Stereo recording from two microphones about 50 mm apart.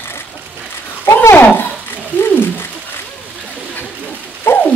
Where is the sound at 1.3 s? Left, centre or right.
Left.